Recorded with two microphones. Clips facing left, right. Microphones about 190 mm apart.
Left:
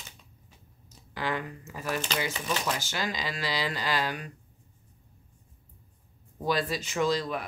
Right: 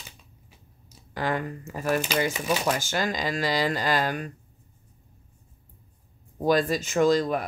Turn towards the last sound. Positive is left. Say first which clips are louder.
# right 6 dB
turn(degrees=-45)  # may be behind; listen again after turning